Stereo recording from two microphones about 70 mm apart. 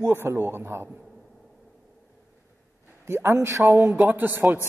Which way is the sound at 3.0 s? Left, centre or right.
Right.